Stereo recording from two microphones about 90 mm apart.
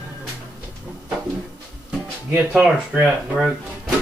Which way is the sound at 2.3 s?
20° right (ahead or behind).